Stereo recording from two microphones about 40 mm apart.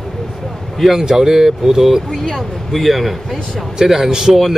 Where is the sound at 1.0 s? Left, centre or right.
Centre.